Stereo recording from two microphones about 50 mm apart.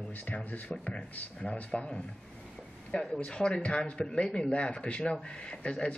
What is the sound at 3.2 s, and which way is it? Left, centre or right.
Speech, centre.